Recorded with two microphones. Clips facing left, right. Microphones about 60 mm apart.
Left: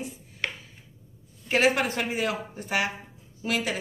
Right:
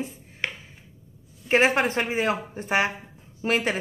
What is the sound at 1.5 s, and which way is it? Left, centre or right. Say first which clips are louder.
A woman's voice: right 3 dB; right.